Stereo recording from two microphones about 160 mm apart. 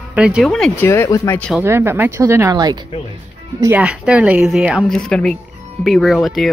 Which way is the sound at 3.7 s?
5° right (ahead or behind).